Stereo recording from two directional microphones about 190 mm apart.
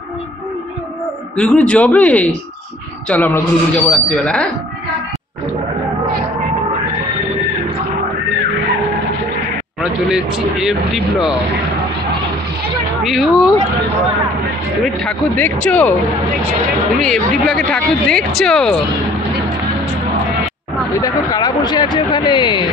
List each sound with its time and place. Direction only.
1.3 s a man's voice: 5° left (ahead or behind)
9.8 s speech: 5° right (ahead or behind)
13.0 s speech: centre (ahead or behind)
15.0 s a man's voice: 5° left (ahead or behind)
17.0 s speech: 5° left (ahead or behind)
21.0 s speech: 20° left (ahead or behind)